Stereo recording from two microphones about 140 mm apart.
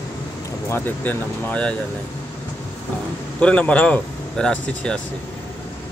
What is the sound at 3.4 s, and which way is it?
Speech, 10° left (ahead or behind).